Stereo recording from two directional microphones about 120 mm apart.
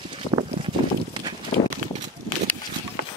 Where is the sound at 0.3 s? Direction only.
40° right (ahead or behind).